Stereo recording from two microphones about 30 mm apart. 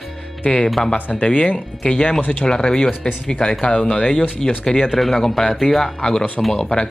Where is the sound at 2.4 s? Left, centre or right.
Left.